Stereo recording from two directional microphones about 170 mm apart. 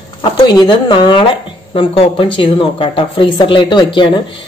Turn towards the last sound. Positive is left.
turn(degrees=30)  # may be behind; listen again after turning